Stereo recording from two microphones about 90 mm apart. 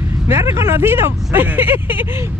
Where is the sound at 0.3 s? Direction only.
30° right (ahead or behind).